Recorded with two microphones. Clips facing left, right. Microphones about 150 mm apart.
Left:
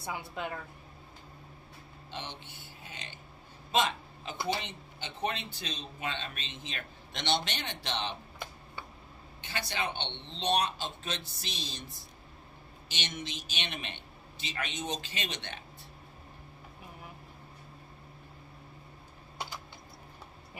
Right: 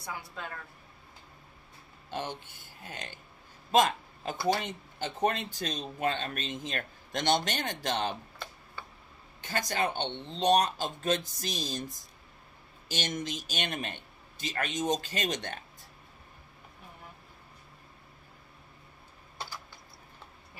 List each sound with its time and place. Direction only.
0.0 s a woman's voice: 20° left (ahead or behind)
2.0 s speech: 45° right (ahead or behind)
9.4 s speech: 45° right (ahead or behind)
12.9 s speech: 45° right (ahead or behind)